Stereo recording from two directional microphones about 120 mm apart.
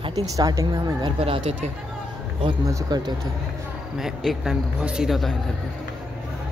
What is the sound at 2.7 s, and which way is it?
Speech, 35° right (ahead or behind).